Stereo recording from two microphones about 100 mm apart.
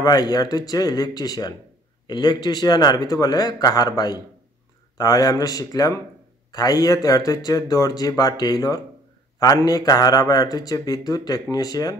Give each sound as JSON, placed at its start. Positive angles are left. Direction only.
{"t": 0.0, "sound": "speech", "side_deg": 40}